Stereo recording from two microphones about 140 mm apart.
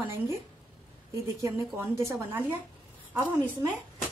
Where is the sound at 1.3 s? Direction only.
20° right (ahead or behind).